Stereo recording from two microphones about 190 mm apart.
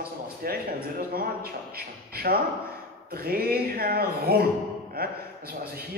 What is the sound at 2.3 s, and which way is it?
A man's voice, 50° right (ahead or behind).